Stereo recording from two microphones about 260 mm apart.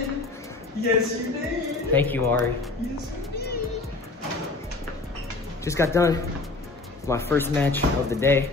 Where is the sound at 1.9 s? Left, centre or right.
Centre.